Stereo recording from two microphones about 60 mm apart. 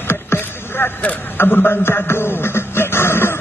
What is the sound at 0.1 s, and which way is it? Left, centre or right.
Vehicle, left.